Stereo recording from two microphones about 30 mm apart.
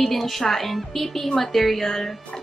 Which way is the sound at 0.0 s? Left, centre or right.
Centre.